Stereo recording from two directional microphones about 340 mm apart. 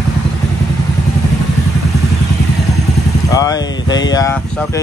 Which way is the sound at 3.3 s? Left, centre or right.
Centre.